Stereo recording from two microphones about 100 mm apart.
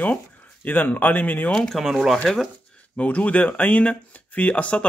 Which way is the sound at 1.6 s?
Centre (ahead or behind).